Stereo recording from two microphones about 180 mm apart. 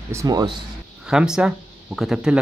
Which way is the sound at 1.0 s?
5° right (ahead or behind).